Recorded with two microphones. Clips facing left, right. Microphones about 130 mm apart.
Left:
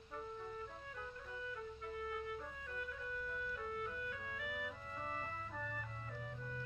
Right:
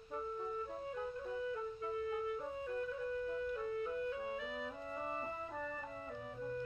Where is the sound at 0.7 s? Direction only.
30° right (ahead or behind).